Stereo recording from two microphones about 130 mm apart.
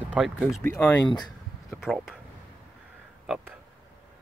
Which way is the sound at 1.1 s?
30° left (ahead or behind).